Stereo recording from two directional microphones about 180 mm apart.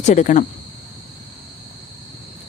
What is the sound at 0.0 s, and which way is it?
Speech, 40° left (ahead or behind).